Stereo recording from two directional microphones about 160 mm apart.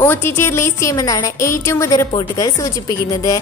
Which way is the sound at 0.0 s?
15° left (ahead or behind).